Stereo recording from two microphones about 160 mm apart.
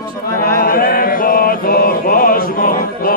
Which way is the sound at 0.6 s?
65° left (ahead or behind).